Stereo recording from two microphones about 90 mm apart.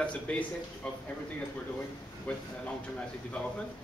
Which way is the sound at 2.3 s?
15° left (ahead or behind).